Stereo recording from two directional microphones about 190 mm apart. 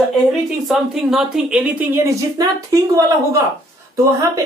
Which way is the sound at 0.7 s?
Centre (ahead or behind).